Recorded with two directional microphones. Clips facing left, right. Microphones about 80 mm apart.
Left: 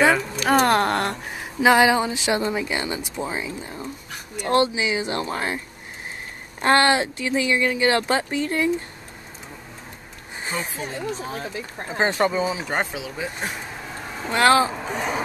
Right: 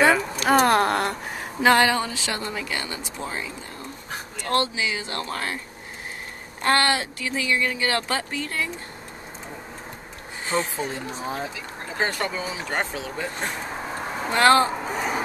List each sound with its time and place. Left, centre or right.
0.5 s speech: centre; by 5.6 s left
6.6 s speech: left
10.8 s speech: right
11.9 s speech: left; by 15.2 s centre